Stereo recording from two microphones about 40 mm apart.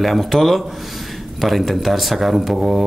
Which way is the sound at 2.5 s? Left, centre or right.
Centre.